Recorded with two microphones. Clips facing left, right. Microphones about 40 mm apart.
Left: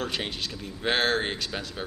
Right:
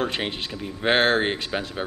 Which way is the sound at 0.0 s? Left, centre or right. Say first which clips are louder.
Right 4 dB; right.